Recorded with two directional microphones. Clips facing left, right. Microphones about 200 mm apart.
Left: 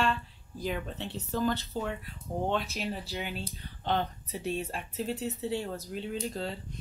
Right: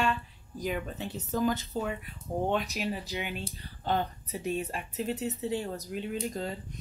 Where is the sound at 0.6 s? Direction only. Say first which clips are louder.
Right 1 dB; 5° right (ahead or behind).